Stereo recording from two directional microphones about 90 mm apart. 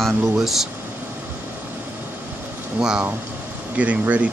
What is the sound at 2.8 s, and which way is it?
Speech, 10° right (ahead or behind).